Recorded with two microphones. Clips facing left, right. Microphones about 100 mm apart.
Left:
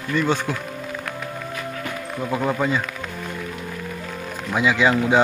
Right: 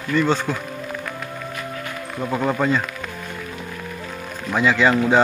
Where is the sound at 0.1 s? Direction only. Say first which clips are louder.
Right 2 dB; 10° left (ahead or behind).